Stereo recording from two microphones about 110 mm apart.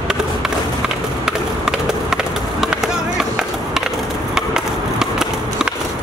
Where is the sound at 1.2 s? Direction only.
5° right (ahead or behind).